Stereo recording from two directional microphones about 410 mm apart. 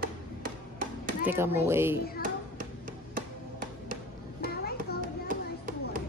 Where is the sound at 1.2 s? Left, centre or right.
Centre.